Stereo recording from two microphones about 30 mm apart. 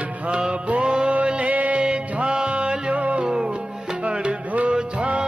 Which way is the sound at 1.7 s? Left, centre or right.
Right.